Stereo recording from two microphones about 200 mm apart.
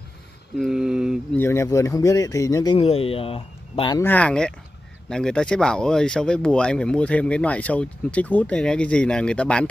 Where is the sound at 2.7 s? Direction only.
30° left (ahead or behind).